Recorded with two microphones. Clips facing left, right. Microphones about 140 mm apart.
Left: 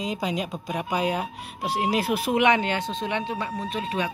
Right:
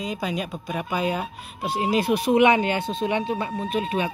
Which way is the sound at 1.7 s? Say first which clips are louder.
Right 1 dB; 70° left (ahead or behind).